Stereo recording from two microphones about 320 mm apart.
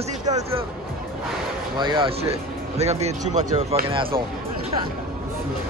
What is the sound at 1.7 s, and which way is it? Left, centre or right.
A man's voice, centre.